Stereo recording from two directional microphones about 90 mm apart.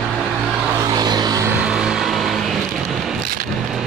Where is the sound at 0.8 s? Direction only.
50° right (ahead or behind).